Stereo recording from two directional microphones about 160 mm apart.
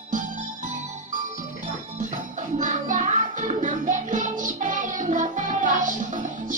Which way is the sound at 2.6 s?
50° right (ahead or behind).